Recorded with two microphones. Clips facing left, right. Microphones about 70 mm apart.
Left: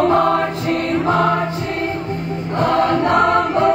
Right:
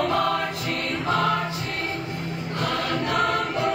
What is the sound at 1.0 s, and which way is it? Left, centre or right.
Choir, left.